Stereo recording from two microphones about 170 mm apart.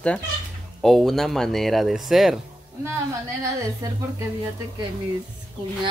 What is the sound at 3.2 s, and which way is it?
Speech, 20° right (ahead or behind).